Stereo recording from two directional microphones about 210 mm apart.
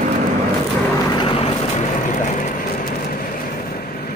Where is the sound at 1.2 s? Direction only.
25° left (ahead or behind).